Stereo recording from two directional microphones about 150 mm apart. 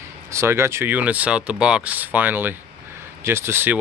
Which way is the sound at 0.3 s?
15° right (ahead or behind).